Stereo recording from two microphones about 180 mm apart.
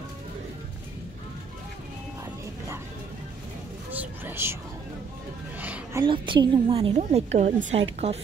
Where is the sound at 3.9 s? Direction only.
10° right (ahead or behind).